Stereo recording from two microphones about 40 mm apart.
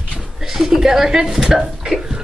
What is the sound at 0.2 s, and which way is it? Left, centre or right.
Speech, centre.